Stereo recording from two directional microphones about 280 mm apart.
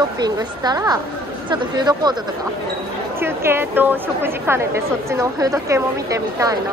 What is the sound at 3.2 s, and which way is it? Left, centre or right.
Speech, centre.